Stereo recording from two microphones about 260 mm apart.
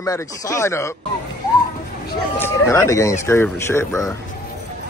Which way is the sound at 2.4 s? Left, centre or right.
Centre.